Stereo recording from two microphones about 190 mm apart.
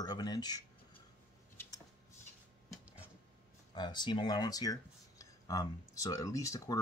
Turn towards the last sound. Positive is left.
turn(degrees=15)  # may be behind; listen again after turning